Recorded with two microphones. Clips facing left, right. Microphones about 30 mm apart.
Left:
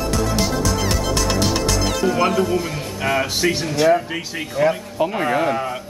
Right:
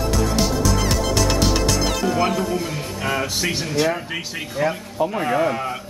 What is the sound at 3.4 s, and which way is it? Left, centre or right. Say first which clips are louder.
Speech: left 4 dB; centre.